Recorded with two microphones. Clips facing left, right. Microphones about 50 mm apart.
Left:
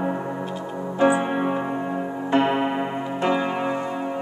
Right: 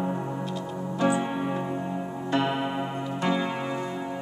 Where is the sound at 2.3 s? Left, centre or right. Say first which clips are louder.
Left 6 dB; left.